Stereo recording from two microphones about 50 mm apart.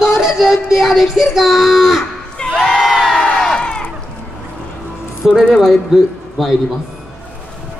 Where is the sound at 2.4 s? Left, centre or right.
Centre.